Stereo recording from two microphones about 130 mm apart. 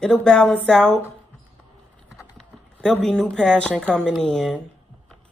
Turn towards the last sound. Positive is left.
turn(degrees=5)  # may be behind; listen again after turning